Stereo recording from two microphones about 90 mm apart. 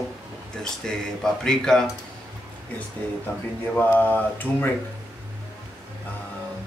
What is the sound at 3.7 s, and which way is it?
Mantra, 20° left (ahead or behind).